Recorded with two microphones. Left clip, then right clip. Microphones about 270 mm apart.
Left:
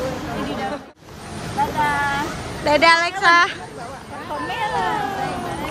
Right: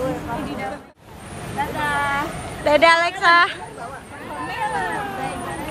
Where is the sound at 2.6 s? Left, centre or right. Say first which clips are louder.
Even; centre.